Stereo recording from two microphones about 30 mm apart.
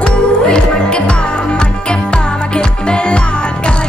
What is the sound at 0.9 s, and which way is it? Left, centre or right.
Music, left.